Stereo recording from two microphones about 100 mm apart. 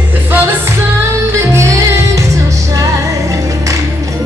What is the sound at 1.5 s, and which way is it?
Music, 30° right (ahead or behind).